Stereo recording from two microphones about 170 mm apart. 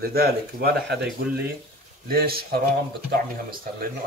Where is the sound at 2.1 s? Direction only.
65° right (ahead or behind).